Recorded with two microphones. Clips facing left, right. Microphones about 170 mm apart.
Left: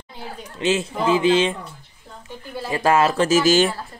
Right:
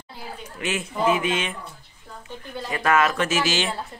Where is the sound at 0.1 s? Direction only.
25° left (ahead or behind).